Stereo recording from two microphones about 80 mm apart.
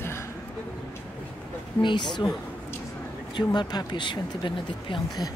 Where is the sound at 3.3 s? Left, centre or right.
Left.